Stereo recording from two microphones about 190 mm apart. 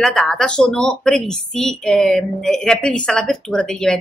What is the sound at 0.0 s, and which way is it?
A woman's voice, 5° left (ahead or behind).